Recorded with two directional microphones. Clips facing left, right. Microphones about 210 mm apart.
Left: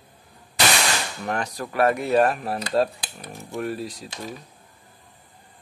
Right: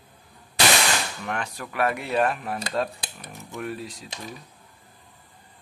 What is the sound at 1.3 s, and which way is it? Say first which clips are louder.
Speech: left 6 dB; 40° left (ahead or behind).